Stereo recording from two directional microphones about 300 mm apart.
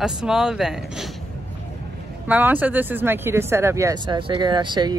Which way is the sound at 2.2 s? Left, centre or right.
Centre.